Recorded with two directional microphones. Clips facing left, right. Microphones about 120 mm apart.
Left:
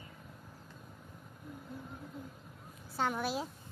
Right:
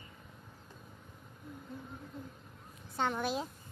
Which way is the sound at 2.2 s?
5° left (ahead or behind).